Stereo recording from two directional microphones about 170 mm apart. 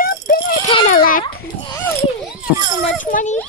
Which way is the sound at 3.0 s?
50° left (ahead or behind).